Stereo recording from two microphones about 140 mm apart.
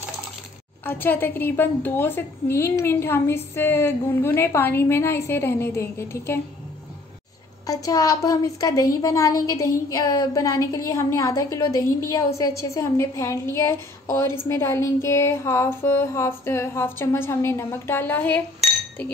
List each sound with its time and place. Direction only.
0.8 s a woman's voice: 15° left (ahead or behind)
7.6 s a woman's voice: 25° left (ahead or behind)